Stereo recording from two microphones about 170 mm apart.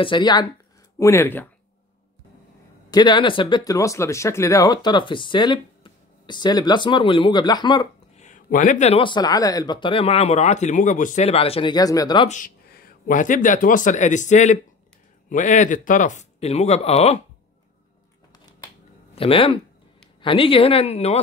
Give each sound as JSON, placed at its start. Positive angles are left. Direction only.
{"t": 0.0, "sound": "speech", "side_deg": 25}
{"t": 2.9, "sound": "speech", "side_deg": 25}
{"t": 8.2, "sound": "a sound", "side_deg": 50}
{"t": 9.0, "sound": "speech", "side_deg": 25}
{"t": 12.3, "sound": "speech", "side_deg": 50}
{"t": 19.1, "sound": "speech", "side_deg": 35}